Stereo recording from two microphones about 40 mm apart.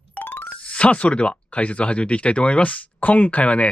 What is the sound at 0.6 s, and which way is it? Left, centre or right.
Speech, left.